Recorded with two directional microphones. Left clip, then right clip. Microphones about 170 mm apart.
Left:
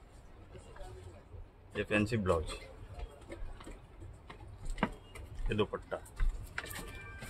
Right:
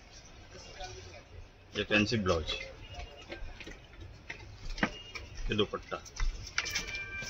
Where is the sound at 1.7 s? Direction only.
10° left (ahead or behind).